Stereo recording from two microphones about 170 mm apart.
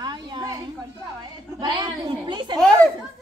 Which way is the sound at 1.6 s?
25° right (ahead or behind).